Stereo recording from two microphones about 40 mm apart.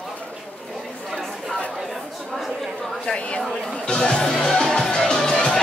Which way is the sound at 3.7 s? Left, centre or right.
Left.